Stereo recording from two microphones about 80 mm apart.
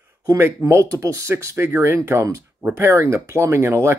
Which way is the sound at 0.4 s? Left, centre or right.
Right.